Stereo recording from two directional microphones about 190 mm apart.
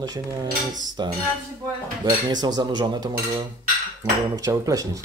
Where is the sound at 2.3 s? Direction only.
20° right (ahead or behind).